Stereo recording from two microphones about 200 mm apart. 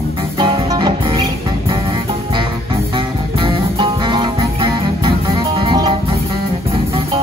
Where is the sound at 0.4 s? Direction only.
25° right (ahead or behind).